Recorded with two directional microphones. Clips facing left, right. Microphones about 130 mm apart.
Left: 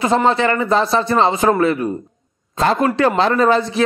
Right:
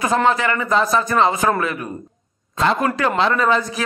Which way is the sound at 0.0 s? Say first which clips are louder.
Left 2 dB; 30° left (ahead or behind).